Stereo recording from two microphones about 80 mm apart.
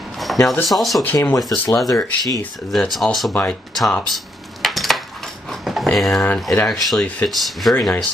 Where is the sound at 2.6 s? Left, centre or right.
Centre.